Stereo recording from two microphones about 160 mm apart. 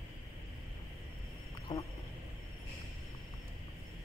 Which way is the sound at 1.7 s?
25° left (ahead or behind).